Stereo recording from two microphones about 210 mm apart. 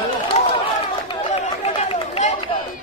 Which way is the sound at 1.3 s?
30° left (ahead or behind).